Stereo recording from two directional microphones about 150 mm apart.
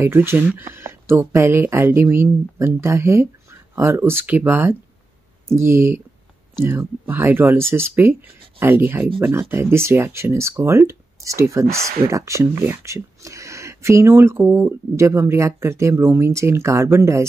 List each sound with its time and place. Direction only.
0.0 s speech: 15° right (ahead or behind)